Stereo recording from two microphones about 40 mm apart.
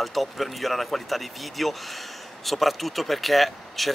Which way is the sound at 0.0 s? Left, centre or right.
Centre.